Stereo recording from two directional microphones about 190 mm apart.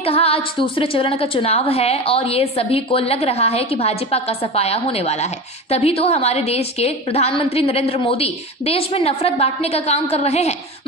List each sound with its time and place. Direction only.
0.0 s a woman's voice: 30° left (ahead or behind)